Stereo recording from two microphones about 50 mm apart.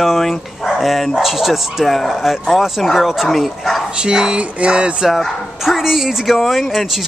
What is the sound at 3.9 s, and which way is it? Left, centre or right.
Speech, centre.